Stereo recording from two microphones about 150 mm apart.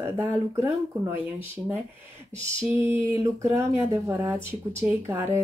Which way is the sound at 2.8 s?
20° right (ahead or behind).